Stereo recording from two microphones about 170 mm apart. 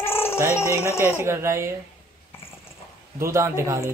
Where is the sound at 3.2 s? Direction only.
15° right (ahead or behind).